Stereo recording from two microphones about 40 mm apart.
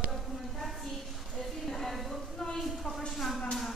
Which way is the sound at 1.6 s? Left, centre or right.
Centre.